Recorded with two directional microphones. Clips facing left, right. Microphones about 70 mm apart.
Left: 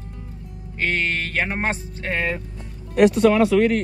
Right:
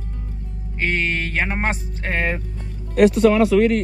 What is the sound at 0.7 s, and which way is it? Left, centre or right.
Speech, centre.